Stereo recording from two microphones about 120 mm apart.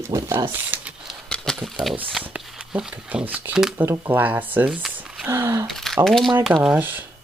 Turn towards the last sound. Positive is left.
turn(degrees=-15)  # may be behind; listen again after turning